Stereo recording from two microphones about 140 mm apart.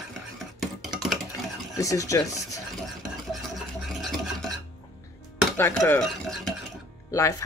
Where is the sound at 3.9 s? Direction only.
Centre (ahead or behind).